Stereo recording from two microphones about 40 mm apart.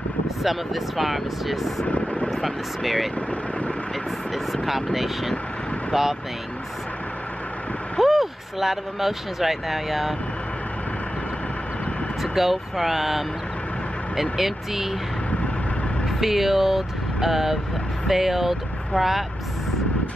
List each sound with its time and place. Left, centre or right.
0.4 s speech: centre
1.9 s vehicle: left
2.3 s speech: centre
4.5 s speech: centre
8.0 s speech: centre
12.2 s speech: centre
14.3 s speech: centre
16.2 s speech: centre